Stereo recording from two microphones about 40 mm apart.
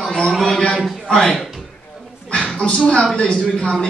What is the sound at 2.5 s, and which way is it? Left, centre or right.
A man's voice, left.